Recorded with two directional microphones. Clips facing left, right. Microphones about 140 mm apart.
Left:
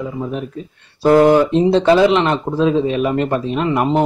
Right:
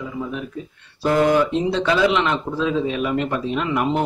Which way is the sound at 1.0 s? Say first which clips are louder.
Left 6 dB; 40° left (ahead or behind).